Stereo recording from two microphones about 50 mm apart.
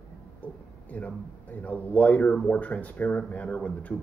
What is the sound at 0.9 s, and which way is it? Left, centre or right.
Speech, left.